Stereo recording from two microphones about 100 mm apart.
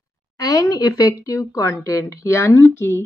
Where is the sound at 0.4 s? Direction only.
35° left (ahead or behind).